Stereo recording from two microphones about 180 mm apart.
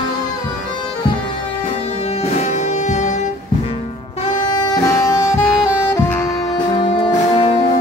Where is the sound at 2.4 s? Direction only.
40° left (ahead or behind).